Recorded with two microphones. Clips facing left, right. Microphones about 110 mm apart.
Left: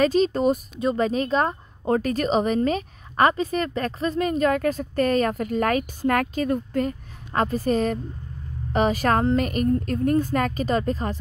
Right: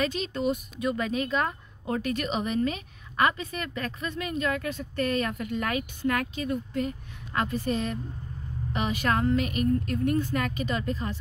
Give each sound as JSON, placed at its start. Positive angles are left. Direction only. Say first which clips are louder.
{"t": 0.0, "sound": "speech", "louder": "left 9 dB", "side_deg": 40}